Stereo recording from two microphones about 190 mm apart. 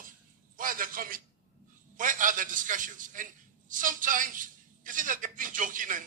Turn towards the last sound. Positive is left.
turn(degrees=-45)  # may be behind; listen again after turning